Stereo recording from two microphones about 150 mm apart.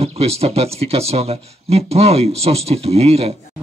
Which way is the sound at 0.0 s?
45° right (ahead or behind).